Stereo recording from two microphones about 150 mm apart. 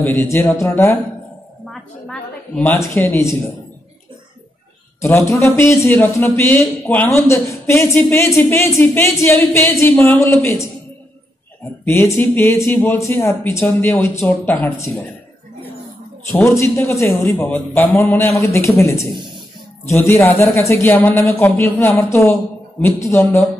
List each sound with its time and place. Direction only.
0.0 s a man's voice: 15° left (ahead or behind)
1.7 s a man's voice: 5° left (ahead or behind)
5.0 s a man's voice: 20° left (ahead or behind)
11.8 s a man's voice: 15° left (ahead or behind)
16.3 s a man's voice: 20° left (ahead or behind)